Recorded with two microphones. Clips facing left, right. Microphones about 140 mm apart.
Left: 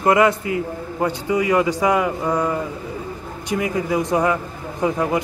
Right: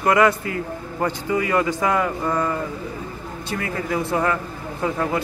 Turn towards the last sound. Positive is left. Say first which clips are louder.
# left 3 dB
turn(degrees=15)  # may be behind; listen again after turning